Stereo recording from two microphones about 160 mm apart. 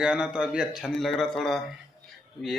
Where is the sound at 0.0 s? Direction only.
5° right (ahead or behind).